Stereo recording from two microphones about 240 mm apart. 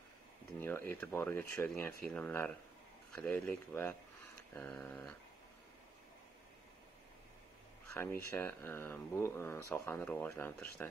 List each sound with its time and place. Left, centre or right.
0.6 s speech: centre
7.9 s speech: centre